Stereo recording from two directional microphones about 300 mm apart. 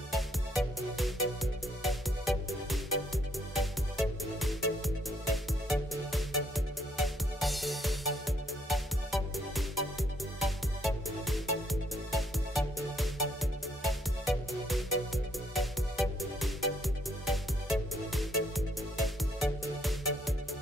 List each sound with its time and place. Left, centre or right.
0.1 s music: centre